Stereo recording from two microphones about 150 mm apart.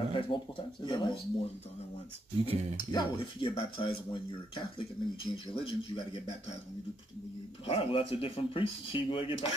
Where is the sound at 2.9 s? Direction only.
30° left (ahead or behind).